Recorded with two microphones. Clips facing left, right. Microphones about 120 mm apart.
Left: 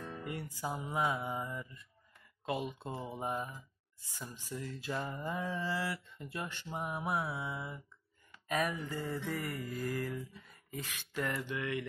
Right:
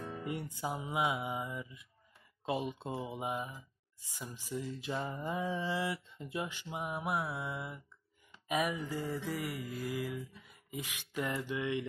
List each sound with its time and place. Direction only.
0.0 s music: 20° right (ahead or behind)
0.7 s mantra: 10° right (ahead or behind)
2.4 s speech: 20° right (ahead or behind)
2.9 s speech: 5° right (ahead or behind)
4.5 s mantra: 20° right (ahead or behind)